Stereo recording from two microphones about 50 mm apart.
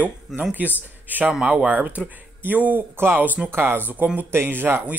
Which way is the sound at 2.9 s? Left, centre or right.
Right.